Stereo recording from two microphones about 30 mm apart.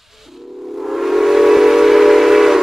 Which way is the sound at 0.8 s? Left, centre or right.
Centre.